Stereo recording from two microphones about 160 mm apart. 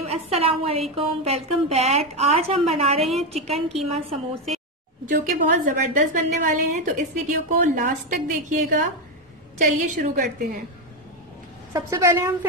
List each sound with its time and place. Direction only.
0.0 s a woman's voice: 40° right (ahead or behind)
3.0 s a woman's voice: centre (ahead or behind)
3.4 s a woman's voice: 40° right (ahead or behind)
5.0 s a woman's voice: 55° right (ahead or behind)
11.7 s a woman's voice: 20° right (ahead or behind)